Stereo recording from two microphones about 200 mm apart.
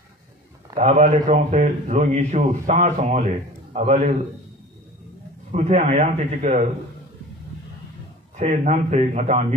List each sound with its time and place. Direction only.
0.7 s a man's voice: 40° right (ahead or behind)
5.5 s a man's voice: 35° right (ahead or behind)
8.4 s a man's voice: 35° right (ahead or behind)